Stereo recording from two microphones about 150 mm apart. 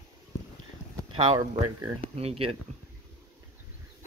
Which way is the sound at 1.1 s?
35° right (ahead or behind).